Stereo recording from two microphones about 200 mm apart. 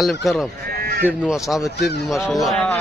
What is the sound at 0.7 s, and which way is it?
Sheep, 50° right (ahead or behind).